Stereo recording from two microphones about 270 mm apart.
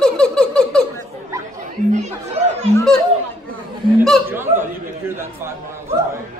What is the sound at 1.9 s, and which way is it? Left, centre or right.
Chatter, right.